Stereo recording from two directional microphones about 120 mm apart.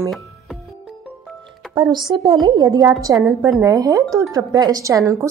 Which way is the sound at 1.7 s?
35° right (ahead or behind).